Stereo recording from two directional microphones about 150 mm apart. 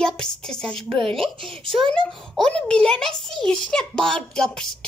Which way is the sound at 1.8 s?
5° left (ahead or behind).